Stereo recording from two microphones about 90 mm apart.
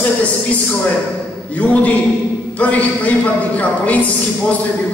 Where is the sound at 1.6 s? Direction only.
15° left (ahead or behind).